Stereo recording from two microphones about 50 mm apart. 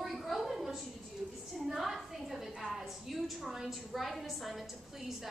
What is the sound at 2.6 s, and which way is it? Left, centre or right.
A woman's voice, centre.